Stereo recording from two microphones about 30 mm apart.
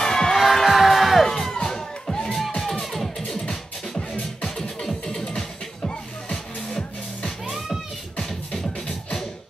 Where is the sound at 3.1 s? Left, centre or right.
Centre.